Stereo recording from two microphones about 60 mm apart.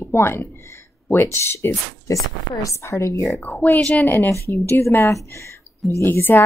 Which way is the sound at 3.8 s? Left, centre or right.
Centre.